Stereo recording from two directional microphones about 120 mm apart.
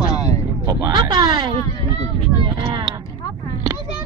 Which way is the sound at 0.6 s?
30° right (ahead or behind).